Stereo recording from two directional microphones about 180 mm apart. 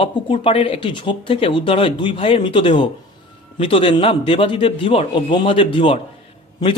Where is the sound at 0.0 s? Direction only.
30° left (ahead or behind).